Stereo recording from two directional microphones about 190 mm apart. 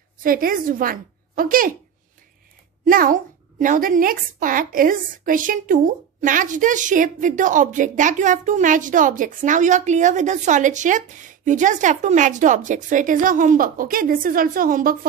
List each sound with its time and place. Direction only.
0.2 s a woman's voice: 50° right (ahead or behind)
2.8 s a woman's voice: 45° right (ahead or behind)